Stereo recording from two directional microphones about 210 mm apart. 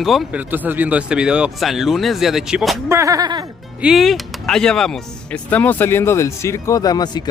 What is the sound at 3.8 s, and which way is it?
Speech, centre (ahead or behind).